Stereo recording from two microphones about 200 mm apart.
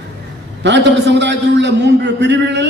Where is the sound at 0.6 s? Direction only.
60° right (ahead or behind).